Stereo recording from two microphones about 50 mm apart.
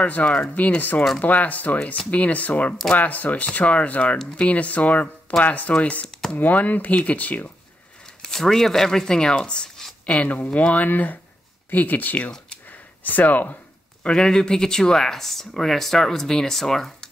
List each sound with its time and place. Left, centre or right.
0.0 s speech: left
8.2 s speech: centre; by 12.3 s left
12.6 s a sound: left
14.0 s speech: centre